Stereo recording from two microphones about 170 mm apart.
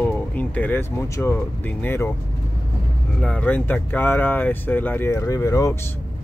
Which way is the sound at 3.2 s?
10° left (ahead or behind).